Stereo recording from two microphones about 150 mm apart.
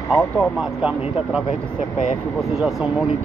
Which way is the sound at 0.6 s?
5° right (ahead or behind).